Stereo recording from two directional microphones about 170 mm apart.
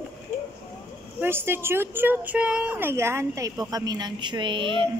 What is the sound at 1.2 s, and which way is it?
A woman's voice, 15° right (ahead or behind).